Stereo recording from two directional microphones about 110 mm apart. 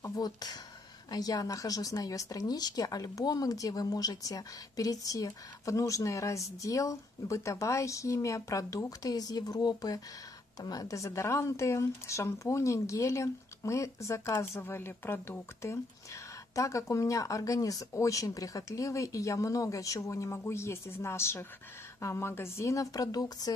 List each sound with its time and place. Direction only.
0.0 s a woman's voice: 35° left (ahead or behind)